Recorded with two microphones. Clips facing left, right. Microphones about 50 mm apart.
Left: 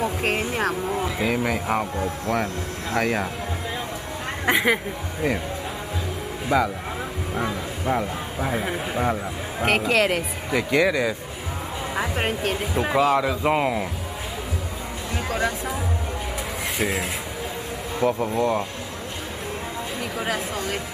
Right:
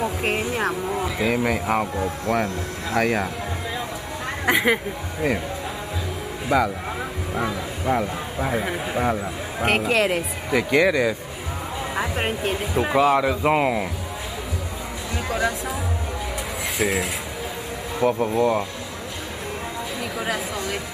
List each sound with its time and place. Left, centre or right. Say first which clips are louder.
0.0 s vehicle: even; centre
0.8 s speech: right 1 dB; centre
4.5 s speech: right 1 dB; centre
6.5 s speech: right 1 dB; centre
11.9 s music: even; centre
12.5 s speech: right 2 dB; centre
15.2 s speech: right 1 dB; centre
20.2 s speech: even; centre